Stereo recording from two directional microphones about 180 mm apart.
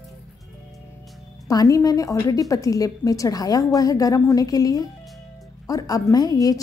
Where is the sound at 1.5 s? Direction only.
20° left (ahead or behind).